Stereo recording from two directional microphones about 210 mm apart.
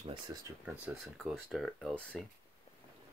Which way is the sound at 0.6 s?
5° right (ahead or behind).